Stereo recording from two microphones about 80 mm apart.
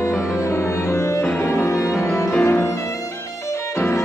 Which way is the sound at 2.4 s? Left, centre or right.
Left.